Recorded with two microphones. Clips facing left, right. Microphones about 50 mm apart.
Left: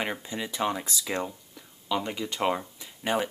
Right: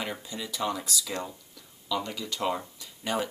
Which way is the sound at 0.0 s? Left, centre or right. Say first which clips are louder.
Left 3 dB; left.